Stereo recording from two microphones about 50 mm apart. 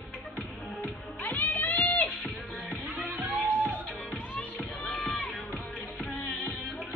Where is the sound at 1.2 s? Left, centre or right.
Left.